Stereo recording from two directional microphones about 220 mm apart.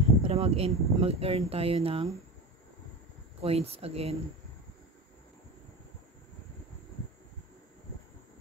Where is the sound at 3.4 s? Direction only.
25° right (ahead or behind).